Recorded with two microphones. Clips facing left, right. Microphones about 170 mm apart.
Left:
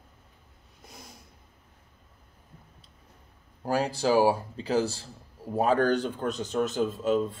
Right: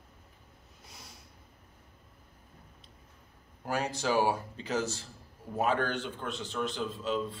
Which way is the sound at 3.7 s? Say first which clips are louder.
Left 6 dB; 35° left (ahead or behind).